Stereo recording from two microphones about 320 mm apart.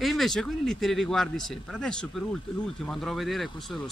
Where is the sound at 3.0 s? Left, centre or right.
Centre.